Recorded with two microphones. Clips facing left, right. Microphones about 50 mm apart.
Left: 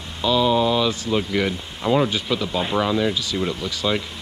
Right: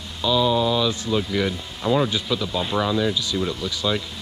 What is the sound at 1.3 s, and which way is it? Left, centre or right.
Speech, left.